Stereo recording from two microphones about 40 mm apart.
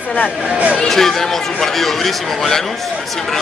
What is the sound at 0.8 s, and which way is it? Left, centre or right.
Speech, centre.